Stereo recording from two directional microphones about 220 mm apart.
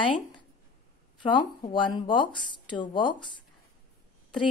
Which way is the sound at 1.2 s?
20° left (ahead or behind).